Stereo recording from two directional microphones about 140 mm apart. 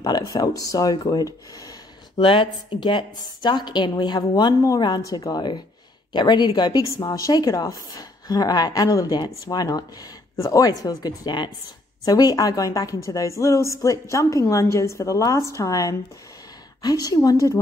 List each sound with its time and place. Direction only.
0.0 s a woman's voice: 30° left (ahead or behind)